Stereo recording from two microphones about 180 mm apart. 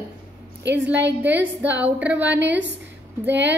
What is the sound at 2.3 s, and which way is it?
A woman's voice, 85° right.